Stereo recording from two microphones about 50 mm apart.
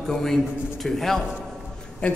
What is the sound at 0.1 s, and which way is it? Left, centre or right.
A man's voice, centre.